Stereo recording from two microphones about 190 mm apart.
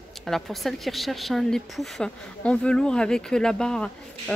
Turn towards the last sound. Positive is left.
turn(degrees=5)  # may be behind; listen again after turning